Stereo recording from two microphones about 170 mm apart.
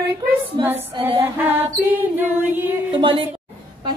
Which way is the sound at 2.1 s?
10° right (ahead or behind).